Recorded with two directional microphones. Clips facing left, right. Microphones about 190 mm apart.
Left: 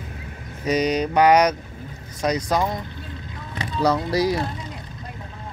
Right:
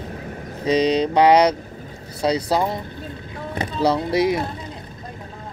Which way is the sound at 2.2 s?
30° right (ahead or behind).